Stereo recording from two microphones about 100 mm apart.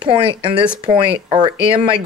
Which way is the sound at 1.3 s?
50° right (ahead or behind).